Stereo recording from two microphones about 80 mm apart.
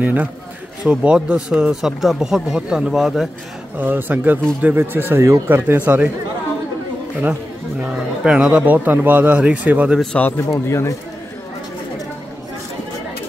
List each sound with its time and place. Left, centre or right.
0.0 s speech: centre
3.7 s speech: right
7.9 s speech: centre
10.1 s a man's voice: left
10.5 s speech: left